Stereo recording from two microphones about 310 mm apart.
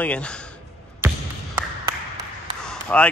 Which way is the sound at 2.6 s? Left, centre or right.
Centre.